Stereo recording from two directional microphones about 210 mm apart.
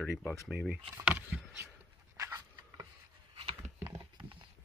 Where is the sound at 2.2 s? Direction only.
15° right (ahead or behind).